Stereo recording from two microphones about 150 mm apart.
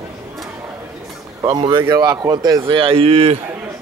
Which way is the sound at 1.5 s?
35° right (ahead or behind).